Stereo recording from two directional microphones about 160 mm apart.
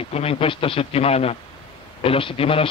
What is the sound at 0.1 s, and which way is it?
A man's voice, 40° left (ahead or behind).